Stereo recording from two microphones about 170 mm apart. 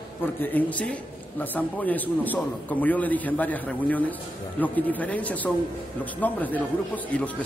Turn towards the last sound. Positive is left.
turn(degrees=10)  # may be behind; listen again after turning